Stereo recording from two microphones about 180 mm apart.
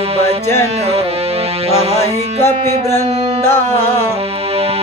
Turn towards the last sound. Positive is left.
turn(degrees=15)  # may be behind; listen again after turning